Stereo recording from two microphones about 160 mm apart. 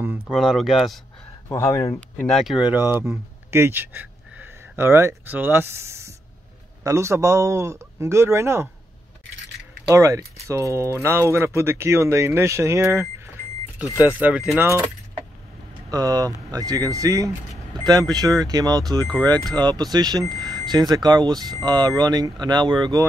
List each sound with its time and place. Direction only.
0.3 s speech: centre (ahead or behind)
1.5 s speech: 20° left (ahead or behind)
2.2 s speech: centre (ahead or behind); by 8.6 s 15° right (ahead or behind)
9.8 s speech: 20° right (ahead or behind)
14.0 s speech: 10° right (ahead or behind)
15.9 s speech: 20° right (ahead or behind)